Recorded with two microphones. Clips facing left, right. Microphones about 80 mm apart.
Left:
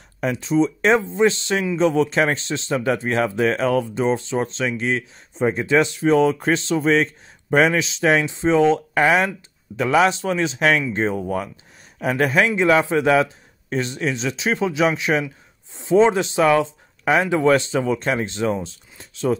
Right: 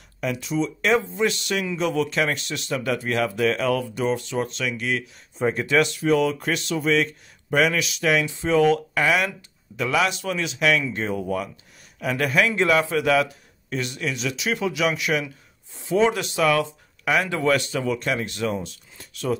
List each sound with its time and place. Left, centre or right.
0.2 s speech: left